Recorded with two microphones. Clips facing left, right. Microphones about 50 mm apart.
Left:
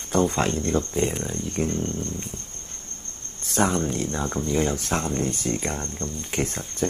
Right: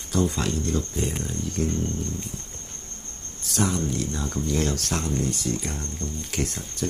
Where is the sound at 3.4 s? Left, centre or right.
Left.